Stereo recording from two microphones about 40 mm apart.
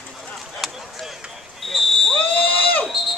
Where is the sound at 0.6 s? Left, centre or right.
Centre.